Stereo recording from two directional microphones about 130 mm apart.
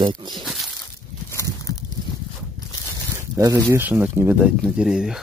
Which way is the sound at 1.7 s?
25° left (ahead or behind).